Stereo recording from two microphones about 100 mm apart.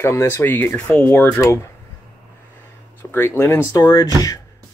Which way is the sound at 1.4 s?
30° left (ahead or behind).